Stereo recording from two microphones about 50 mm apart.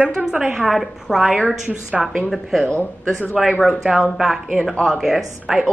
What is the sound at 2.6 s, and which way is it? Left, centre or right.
Speech, centre.